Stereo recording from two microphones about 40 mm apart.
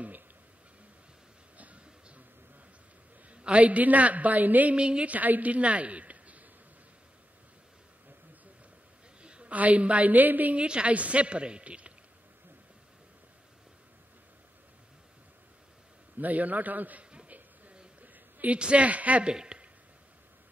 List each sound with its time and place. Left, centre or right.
1.6 s music: right
3.3 s a woman's voice: right
4.7 s a woman's voice: right
5.0 s a woman's voice: right
9.2 s a woman's voice: right
10.5 s a woman's voice: right
16.2 s a man's voice: right
18.0 s a sound: right
18.6 s a woman's voice: right
19.2 s speech: right